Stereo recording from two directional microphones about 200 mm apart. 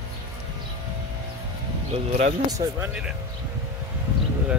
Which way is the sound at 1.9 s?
35° right (ahead or behind).